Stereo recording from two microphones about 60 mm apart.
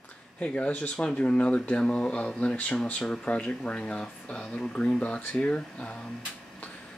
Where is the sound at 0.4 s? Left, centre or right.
Left.